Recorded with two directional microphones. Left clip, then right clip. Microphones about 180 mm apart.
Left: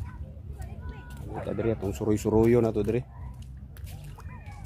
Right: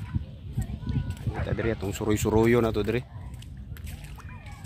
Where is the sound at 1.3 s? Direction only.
15° right (ahead or behind).